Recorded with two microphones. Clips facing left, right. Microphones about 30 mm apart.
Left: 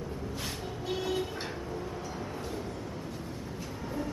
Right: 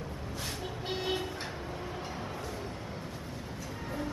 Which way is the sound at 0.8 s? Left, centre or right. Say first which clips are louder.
Left 1 dB; right.